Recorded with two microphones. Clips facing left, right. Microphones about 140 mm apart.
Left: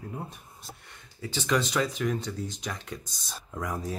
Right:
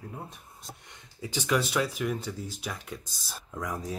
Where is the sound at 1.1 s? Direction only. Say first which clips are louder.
Even; 15° right (ahead or behind).